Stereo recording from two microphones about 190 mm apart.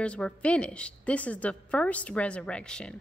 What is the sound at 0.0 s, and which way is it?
A woman's voice, 5° left (ahead or behind).